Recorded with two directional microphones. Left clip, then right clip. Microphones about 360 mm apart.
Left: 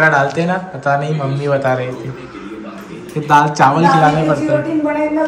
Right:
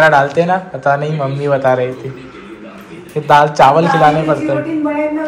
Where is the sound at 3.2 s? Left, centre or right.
Centre.